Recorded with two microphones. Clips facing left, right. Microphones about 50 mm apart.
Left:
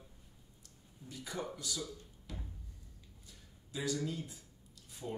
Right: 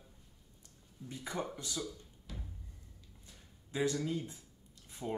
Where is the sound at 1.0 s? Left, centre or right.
Right.